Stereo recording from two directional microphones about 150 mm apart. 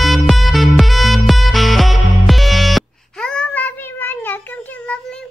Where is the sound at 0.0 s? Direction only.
Centre (ahead or behind).